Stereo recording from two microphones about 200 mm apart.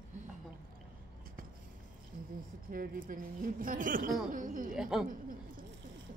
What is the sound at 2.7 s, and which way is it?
Speech, 45° right (ahead or behind).